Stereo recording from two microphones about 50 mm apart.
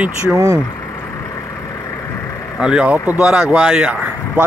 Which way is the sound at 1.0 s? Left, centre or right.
Left.